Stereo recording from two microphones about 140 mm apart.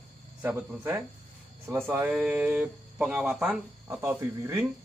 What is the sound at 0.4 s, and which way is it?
Speech, 15° right (ahead or behind).